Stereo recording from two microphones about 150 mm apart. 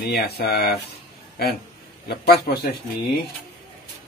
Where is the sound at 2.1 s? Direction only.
90° left.